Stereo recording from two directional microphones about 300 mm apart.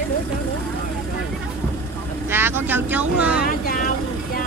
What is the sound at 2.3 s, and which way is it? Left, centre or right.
Speech, centre.